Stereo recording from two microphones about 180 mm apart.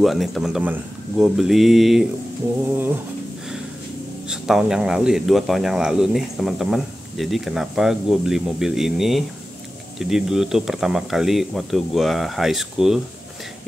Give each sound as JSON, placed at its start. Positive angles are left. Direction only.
{"t": 0.0, "sound": "speech", "side_deg": 0}
{"t": 4.3, "sound": "speech", "side_deg": -5}